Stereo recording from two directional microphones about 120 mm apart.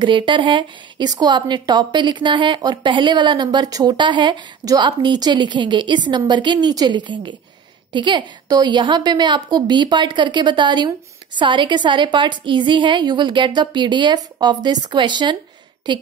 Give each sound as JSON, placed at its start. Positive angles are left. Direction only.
{"t": 0.0, "sound": "a woman's voice", "side_deg": -40}